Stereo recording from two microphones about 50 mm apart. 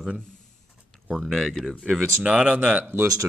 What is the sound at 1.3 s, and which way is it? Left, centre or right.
Speech, centre.